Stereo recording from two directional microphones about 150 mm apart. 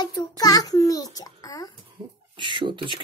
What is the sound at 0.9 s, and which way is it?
Speech, 25° left (ahead or behind).